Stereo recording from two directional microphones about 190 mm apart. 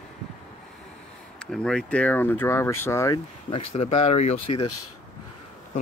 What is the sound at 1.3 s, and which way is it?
Speech, 5° left (ahead or behind).